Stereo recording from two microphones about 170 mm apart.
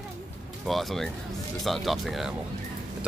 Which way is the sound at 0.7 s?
Centre (ahead or behind).